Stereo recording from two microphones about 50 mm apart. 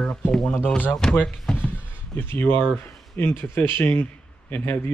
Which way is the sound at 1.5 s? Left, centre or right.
Centre.